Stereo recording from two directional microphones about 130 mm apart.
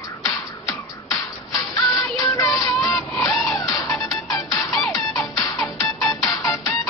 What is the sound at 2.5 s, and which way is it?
Music, 25° left (ahead or behind).